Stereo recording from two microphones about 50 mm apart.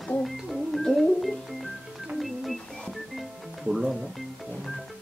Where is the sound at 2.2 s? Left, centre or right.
Centre.